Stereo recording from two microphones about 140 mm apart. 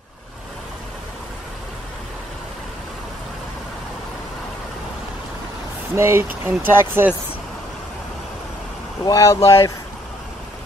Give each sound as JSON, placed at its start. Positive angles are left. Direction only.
{"t": 5.9, "sound": "speech", "side_deg": -20}
{"t": 9.0, "sound": "speech", "side_deg": 25}